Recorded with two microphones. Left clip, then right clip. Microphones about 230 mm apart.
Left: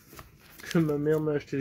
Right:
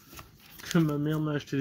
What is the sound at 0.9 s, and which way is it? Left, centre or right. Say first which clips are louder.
Speech: left 5 dB; right.